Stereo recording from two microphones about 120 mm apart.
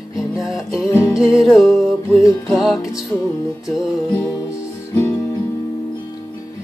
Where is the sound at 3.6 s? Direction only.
5° right (ahead or behind).